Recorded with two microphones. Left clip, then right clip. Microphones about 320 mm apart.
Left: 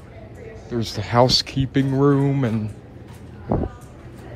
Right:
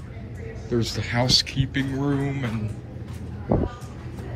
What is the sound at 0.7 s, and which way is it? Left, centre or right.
Speech, centre.